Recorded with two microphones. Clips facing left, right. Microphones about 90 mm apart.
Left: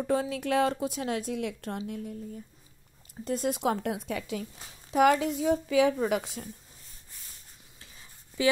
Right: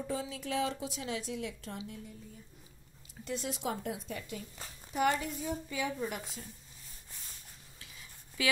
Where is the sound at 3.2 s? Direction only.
50° left (ahead or behind); by 6.5 s 85° left.